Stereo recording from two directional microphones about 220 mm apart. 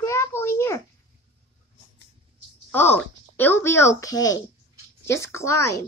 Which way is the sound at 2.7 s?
10° left (ahead or behind).